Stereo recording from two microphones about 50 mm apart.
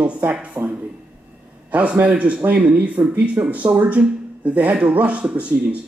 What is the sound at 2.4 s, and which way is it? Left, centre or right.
A man's voice, right.